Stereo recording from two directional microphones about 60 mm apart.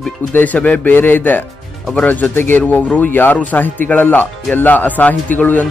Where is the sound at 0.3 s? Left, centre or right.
Left.